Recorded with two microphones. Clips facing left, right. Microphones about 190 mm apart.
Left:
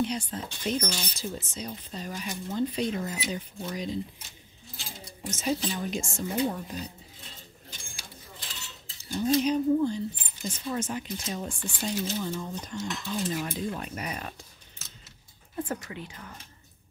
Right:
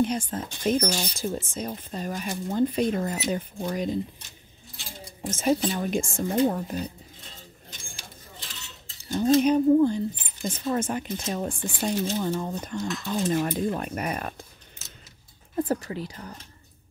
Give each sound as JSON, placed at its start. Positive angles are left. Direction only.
{"t": 0.0, "sound": "speech", "side_deg": -50}
{"t": 5.2, "sound": "speech", "side_deg": -50}
{"t": 9.1, "sound": "speech", "side_deg": -50}
{"t": 15.5, "sound": "speech", "side_deg": -35}